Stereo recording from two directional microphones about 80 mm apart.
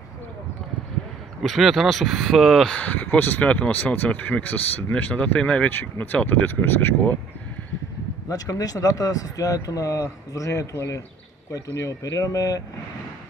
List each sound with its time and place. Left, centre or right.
1.4 s speech: centre
2.7 s speech: centre
8.3 s speech: left